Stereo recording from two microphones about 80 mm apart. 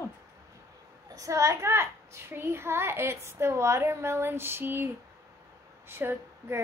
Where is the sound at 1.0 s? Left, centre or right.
Right.